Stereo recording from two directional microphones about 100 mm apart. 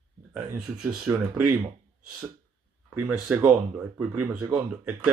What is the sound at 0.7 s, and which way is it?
Speech, 10° right (ahead or behind).